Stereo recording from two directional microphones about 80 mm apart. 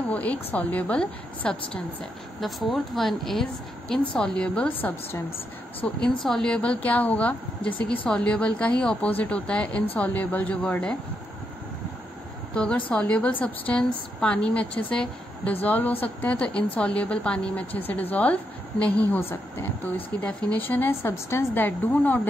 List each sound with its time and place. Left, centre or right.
0.1 s a woman's voice: centre
2.4 s a woman's voice: centre
5.9 s a woman's voice: centre
12.5 s a woman's voice: centre
21.1 s a woman's voice: left